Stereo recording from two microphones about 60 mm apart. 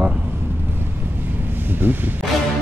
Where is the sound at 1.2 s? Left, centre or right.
Right.